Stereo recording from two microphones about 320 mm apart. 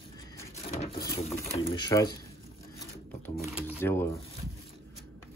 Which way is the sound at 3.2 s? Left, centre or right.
Centre.